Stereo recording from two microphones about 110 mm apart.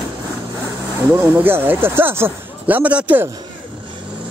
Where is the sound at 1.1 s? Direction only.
20° right (ahead or behind).